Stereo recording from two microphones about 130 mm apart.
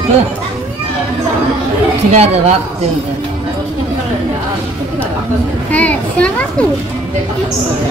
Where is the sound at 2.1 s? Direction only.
55° right (ahead or behind).